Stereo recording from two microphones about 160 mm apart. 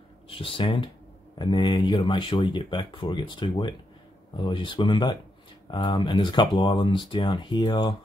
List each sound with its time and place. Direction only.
0.3 s speech: 35° left (ahead or behind)